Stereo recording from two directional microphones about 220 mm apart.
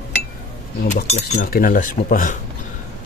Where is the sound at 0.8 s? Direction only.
30° left (ahead or behind).